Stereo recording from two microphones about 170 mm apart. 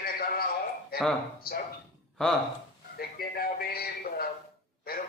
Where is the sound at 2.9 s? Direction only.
65° left (ahead or behind).